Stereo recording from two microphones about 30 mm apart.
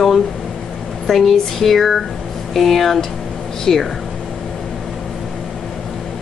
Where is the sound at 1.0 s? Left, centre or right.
Centre.